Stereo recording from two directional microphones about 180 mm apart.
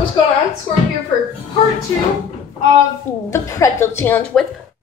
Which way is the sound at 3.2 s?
15° left (ahead or behind).